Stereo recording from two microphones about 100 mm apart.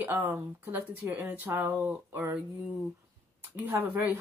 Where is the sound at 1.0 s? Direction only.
30° right (ahead or behind).